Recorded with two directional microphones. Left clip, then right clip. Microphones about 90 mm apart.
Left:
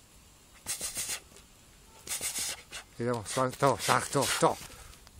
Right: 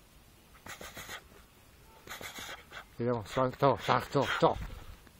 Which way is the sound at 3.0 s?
15° right (ahead or behind).